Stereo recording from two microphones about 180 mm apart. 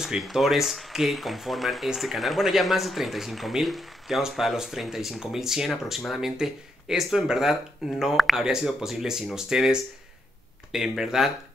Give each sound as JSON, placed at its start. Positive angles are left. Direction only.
{"t": 0.0, "sound": "speech", "side_deg": 0}